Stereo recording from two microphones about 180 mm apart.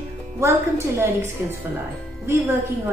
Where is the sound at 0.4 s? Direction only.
15° right (ahead or behind).